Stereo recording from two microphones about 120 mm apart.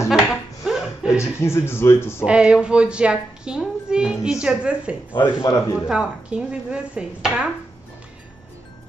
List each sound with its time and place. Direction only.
0.1 s a sound: 5° right (ahead or behind)
1.4 s a man's voice: 20° left (ahead or behind)
2.2 s a woman's voice: 10° right (ahead or behind)
5.1 s a man's voice: 40° left (ahead or behind)
5.9 s a woman's voice: 10° right (ahead or behind)